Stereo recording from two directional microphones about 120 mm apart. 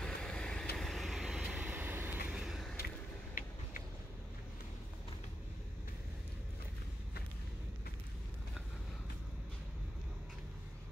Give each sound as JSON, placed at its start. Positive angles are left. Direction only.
{"t": 0.0, "sound": "vehicle", "side_deg": 5}
{"t": 1.7, "sound": "vehicle", "side_deg": -20}
{"t": 2.3, "sound": "a sound", "side_deg": -5}